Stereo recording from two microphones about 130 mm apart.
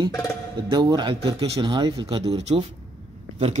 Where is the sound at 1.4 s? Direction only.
45° right (ahead or behind).